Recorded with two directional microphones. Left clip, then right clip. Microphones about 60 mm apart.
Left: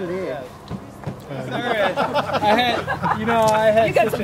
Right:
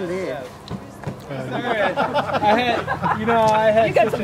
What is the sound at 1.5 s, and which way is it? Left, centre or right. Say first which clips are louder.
Speech: even; left.